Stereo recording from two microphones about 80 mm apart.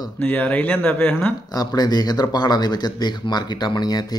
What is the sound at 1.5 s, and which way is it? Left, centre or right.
Speech, left.